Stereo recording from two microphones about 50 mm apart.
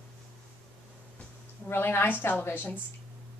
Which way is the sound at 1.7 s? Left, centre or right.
Left.